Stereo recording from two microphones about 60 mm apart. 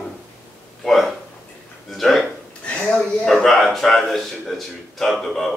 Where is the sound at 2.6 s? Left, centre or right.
Left.